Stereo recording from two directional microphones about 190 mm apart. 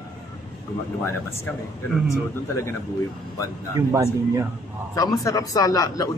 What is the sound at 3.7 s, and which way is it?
Speech, 15° right (ahead or behind).